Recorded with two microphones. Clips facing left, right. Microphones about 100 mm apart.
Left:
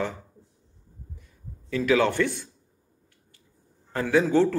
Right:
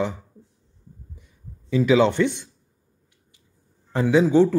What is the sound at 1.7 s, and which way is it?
Speech, 15° right (ahead or behind).